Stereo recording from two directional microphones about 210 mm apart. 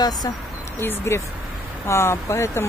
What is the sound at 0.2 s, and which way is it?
Speech, 20° left (ahead or behind).